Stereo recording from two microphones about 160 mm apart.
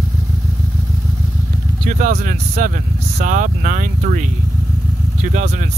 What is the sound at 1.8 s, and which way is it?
Speech, 55° right (ahead or behind).